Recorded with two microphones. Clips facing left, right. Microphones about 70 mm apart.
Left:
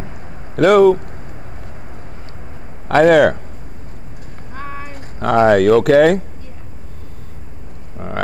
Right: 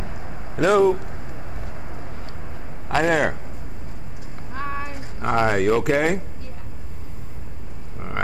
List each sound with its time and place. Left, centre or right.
0.6 s a man's voice: left
2.9 s a man's voice: left
4.6 s a sound: centre
4.9 s speech: left